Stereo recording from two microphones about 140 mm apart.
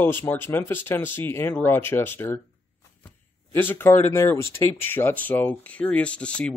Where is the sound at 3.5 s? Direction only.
15° left (ahead or behind).